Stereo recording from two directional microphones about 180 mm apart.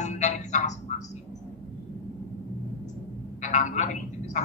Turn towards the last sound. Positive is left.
turn(degrees=40)  # may be behind; listen again after turning